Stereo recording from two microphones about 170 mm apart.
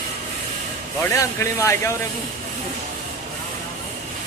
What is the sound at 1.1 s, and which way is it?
Speech, 15° left (ahead or behind).